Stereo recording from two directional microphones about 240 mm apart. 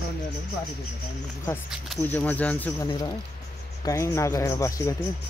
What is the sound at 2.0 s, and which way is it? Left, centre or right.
Speech, centre.